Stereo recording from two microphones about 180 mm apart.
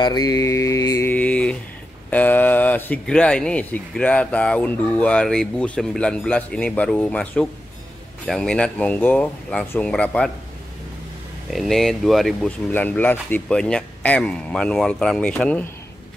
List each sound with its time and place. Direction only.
0.0 s mantra: 20° left (ahead or behind); by 1.6 s 5° left (ahead or behind)
2.0 s speech: 10° left (ahead or behind)
11.5 s speech: centre (ahead or behind)